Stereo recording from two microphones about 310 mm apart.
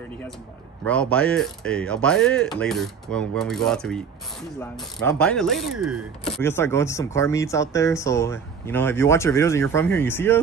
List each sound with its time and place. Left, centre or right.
0.8 s speech: centre